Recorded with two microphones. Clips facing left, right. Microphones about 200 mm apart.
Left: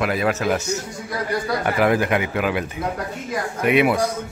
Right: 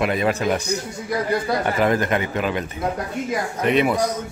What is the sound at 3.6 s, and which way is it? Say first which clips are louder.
Speech: left 1 dB; 10° left (ahead or behind).